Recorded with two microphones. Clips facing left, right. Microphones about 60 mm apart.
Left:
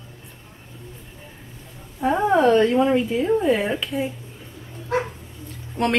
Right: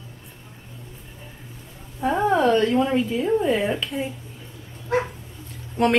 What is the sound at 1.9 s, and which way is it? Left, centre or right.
A woman's voice, centre.